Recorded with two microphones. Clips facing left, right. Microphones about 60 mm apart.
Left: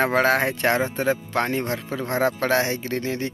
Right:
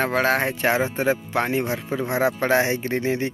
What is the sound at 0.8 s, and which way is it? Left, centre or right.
Speech, centre.